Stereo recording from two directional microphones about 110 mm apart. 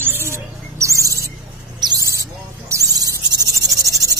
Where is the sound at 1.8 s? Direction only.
35° right (ahead or behind).